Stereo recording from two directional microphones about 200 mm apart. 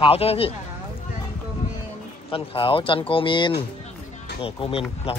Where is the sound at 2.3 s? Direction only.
25° left (ahead or behind).